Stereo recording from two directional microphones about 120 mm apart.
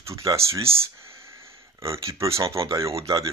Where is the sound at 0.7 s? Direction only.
25° right (ahead or behind).